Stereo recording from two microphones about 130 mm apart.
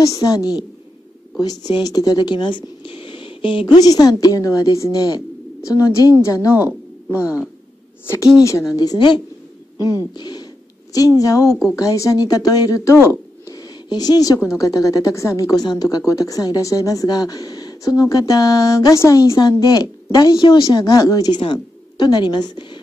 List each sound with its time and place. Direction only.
0.0 s speech: 30° left (ahead or behind)
8.4 s speech: 25° left (ahead or behind)
10.1 s a sound: 30° left (ahead or behind)
11.7 s a woman's voice: 25° left (ahead or behind)